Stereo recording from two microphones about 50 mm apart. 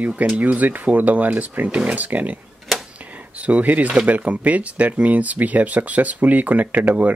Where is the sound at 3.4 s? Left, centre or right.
Right.